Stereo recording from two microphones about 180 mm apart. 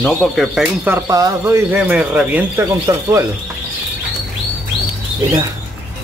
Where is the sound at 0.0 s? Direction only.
Centre (ahead or behind).